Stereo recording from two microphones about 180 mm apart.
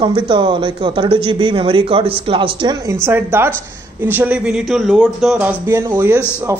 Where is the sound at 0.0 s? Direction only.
25° right (ahead or behind).